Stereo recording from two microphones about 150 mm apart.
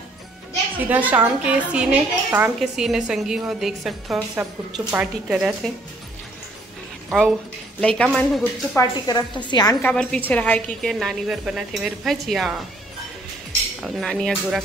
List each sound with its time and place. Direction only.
0.8 s a woman's voice: 10° right (ahead or behind)
7.1 s a woman's voice: centre (ahead or behind)
8.7 s a woman's voice: 25° left (ahead or behind)
9.8 s a woman's voice: 10° left (ahead or behind)
13.8 s a woman's voice: centre (ahead or behind)